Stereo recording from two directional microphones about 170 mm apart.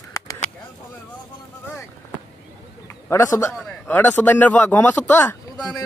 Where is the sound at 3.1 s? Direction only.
15° left (ahead or behind).